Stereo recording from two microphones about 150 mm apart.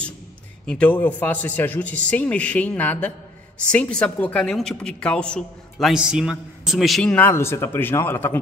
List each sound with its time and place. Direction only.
0.7 s a man's voice: 10° left (ahead or behind)
7.2 s a man's voice: 15° left (ahead or behind)